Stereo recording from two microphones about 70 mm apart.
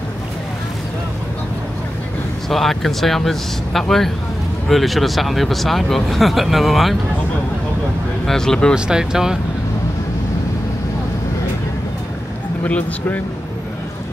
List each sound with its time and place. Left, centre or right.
2.5 s speech: centre
8.3 s speech: centre
8.7 s speech: centre
12.6 s speech: centre